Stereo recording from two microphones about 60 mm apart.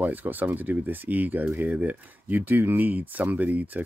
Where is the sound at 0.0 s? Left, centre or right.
Right.